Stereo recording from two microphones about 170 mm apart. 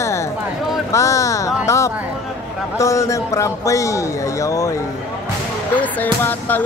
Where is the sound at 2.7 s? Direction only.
15° left (ahead or behind).